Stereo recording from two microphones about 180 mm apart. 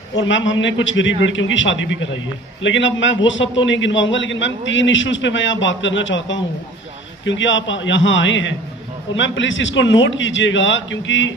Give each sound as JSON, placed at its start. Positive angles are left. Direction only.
{"t": 0.2, "sound": "a man's voice", "side_deg": 90}